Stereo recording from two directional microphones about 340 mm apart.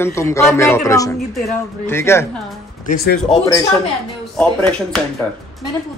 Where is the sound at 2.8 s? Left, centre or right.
Left.